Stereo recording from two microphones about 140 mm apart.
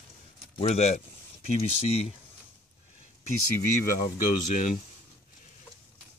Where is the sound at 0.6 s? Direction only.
50° left (ahead or behind).